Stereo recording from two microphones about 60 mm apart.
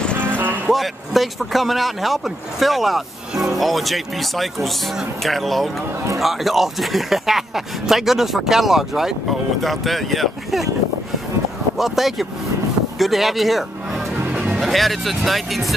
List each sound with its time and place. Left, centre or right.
0.1 s music: right
0.7 s speech: centre
11.8 s speech: centre